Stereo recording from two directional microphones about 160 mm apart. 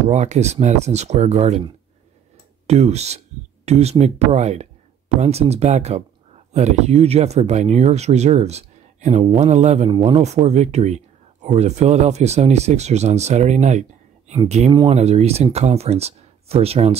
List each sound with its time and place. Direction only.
0.1 s speech: 45° right (ahead or behind)
2.6 s speech: 40° right (ahead or behind)
14.7 s speech: 30° right (ahead or behind)
15.0 s speech: 40° right (ahead or behind)